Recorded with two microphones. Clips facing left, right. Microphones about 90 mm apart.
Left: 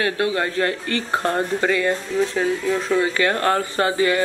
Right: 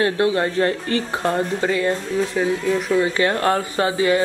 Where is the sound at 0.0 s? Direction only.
25° right (ahead or behind).